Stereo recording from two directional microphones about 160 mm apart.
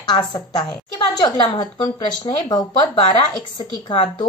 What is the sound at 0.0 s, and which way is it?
A woman's voice, 25° left (ahead or behind).